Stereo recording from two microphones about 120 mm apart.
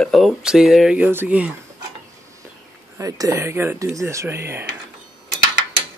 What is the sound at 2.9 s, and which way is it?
Speech, 30° right (ahead or behind).